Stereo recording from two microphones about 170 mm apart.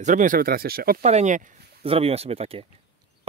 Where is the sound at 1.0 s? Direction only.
45° right (ahead or behind).